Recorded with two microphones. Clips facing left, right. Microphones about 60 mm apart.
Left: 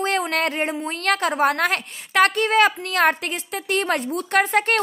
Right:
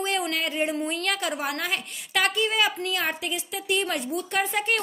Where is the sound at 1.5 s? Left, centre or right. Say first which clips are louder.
Left 7 dB; left.